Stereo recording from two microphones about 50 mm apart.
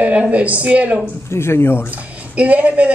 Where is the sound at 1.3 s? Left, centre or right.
Left.